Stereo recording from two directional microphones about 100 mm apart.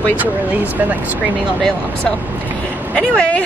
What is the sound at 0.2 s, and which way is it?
Speech, 15° right (ahead or behind).